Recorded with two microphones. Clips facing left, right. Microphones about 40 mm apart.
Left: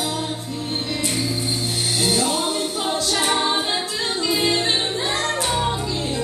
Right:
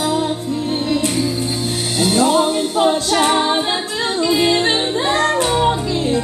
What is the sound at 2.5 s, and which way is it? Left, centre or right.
A capella, right.